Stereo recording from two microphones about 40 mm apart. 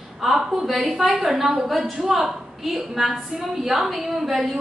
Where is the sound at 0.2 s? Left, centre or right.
Centre.